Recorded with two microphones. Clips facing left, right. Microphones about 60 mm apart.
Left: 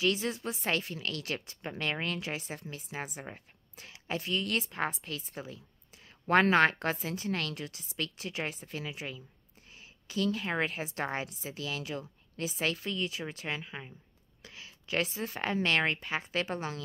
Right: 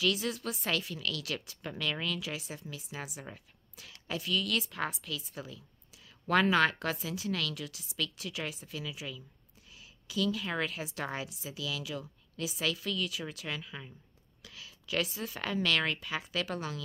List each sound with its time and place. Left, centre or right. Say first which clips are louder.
0.0 s a woman's voice: left 1 dB; left